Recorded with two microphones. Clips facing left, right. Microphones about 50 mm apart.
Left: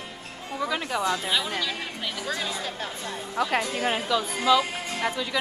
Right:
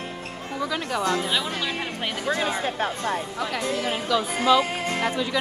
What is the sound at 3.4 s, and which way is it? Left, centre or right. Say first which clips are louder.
Speech: left 3 dB; left.